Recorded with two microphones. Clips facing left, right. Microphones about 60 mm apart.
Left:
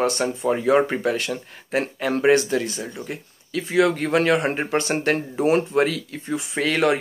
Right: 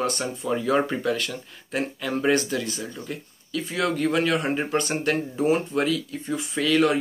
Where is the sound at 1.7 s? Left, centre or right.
Left.